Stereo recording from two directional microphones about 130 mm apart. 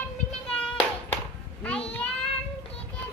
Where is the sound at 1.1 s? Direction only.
10° left (ahead or behind).